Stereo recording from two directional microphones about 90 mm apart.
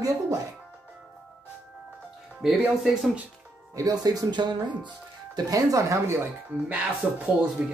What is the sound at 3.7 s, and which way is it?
Speech, 45° right (ahead or behind).